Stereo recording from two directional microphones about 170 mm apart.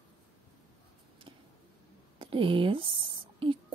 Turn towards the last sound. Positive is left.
turn(degrees=-30)  # may be behind; listen again after turning